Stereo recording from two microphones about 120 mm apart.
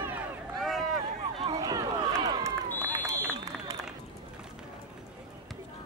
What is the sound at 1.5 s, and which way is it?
Run, 30° right (ahead or behind).